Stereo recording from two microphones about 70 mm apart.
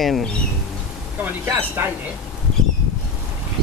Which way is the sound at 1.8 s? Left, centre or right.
Right.